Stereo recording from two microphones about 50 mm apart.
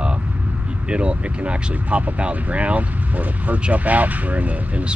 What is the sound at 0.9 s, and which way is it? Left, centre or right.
Speech, right.